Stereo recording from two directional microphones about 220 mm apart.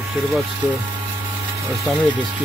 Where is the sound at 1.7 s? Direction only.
5° right (ahead or behind).